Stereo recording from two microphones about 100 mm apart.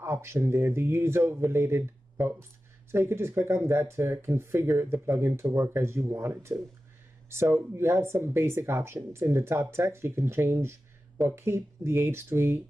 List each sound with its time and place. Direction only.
0.0 s speech: 25° right (ahead or behind)